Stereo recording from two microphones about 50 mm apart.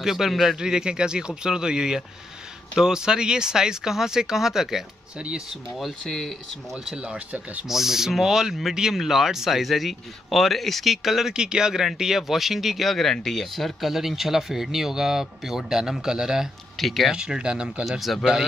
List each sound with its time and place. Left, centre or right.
0.0 s speech: centre
0.6 s speech: centre
6.0 s speech: centre
7.0 s speech: right
7.6 s speech: centre
16.7 s speech: centre
17.1 s speech: centre
17.8 s speech: centre